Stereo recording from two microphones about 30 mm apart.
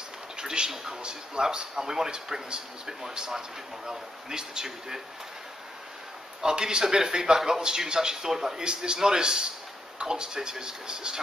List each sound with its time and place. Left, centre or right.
0.4 s a sound: right
1.0 s a man's voice: right
6.4 s a man's voice: right
8.5 s a man's voice: right